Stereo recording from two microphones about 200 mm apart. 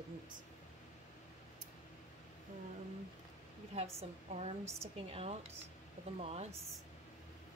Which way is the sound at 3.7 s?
30° right (ahead or behind).